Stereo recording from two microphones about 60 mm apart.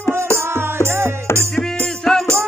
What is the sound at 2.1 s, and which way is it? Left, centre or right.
Music, centre.